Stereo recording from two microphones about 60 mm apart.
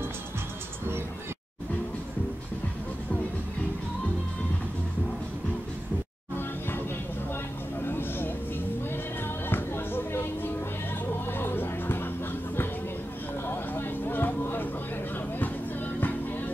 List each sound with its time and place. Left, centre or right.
7.8 s vehicle: left
9.5 s music: left
13.5 s a sound: left
16.0 s music: left